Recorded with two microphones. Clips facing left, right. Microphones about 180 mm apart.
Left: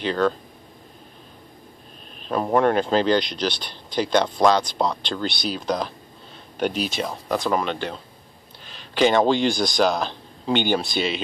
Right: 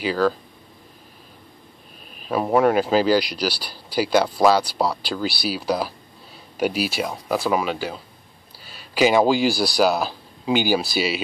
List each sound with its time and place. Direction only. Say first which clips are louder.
0.0 s speech: right 1 dB; 5° right (ahead or behind)
2.1 s speech: right 1 dB; 5° right (ahead or behind)